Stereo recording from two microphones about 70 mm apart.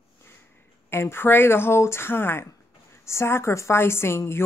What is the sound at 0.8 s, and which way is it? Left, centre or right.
A woman's voice, left.